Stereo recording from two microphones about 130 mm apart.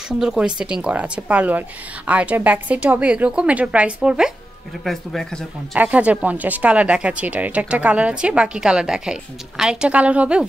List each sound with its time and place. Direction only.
0.2 s speech: 5° right (ahead or behind)
4.8 s speech: 5° left (ahead or behind)
5.8 s speech: 10° right (ahead or behind)